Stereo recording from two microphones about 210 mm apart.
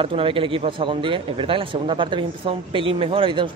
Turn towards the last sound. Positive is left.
turn(degrees=-25)  # may be behind; listen again after turning